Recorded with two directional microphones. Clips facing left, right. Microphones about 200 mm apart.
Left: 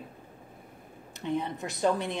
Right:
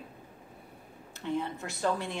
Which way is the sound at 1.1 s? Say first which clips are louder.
Left 2 dB; 20° left (ahead or behind).